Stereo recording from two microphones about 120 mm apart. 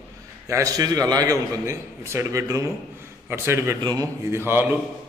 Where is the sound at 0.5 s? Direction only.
25° right (ahead or behind).